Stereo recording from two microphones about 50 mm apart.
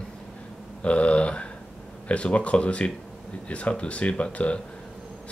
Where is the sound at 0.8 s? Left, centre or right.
Left.